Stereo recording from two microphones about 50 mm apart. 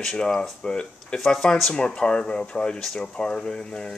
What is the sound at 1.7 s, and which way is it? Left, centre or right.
Speech, centre.